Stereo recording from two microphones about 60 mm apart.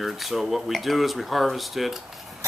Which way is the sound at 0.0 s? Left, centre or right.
Centre.